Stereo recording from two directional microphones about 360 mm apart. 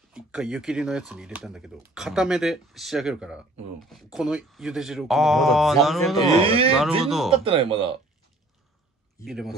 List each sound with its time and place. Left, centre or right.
0.1 s speech: centre
6.4 s speech: centre
7.0 s speech: centre
7.4 s speech: centre
9.2 s speech: centre